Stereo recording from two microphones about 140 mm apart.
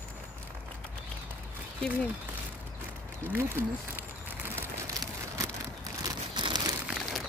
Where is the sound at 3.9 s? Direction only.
15° right (ahead or behind); by 6.7 s 35° right (ahead or behind).